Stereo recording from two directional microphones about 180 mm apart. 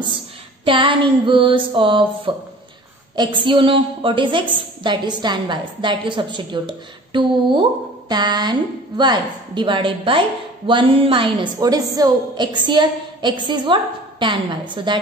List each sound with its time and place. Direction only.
0.7 s a woman's voice: 30° right (ahead or behind)
3.4 s a woman's voice: 30° right (ahead or behind)